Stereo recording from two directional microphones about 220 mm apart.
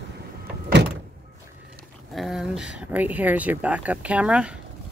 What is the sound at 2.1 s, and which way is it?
Speech, centre (ahead or behind).